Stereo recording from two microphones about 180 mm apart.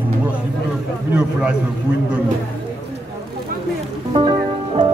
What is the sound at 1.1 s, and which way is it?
Speech, 5° right (ahead or behind).